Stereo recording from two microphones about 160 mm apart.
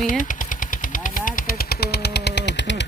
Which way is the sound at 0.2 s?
55° left (ahead or behind).